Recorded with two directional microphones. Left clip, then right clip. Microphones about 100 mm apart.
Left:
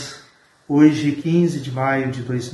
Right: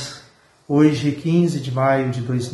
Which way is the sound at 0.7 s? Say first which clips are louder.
Left 2 dB; 20° right (ahead or behind).